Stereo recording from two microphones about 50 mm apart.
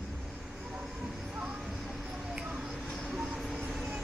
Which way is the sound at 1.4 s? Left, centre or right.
Centre.